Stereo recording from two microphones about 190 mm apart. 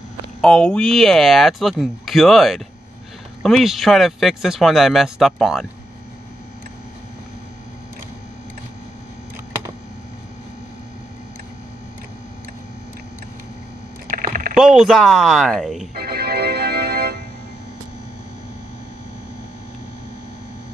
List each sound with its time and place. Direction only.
0.4 s speech: 5° left (ahead or behind)
14.1 s rowboat: 45° right (ahead or behind)
14.6 s speech: centre (ahead or behind)
15.9 s organ: 55° right (ahead or behind)